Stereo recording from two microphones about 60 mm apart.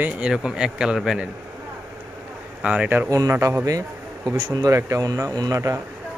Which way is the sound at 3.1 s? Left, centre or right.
Right.